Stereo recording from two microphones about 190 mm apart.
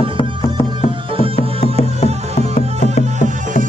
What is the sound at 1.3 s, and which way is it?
Music, 35° left (ahead or behind).